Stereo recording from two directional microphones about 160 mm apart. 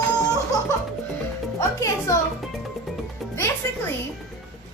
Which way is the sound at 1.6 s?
20° left (ahead or behind).